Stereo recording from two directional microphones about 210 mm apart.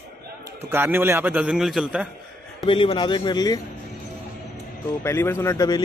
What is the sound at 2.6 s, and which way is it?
Speech, 25° left (ahead or behind).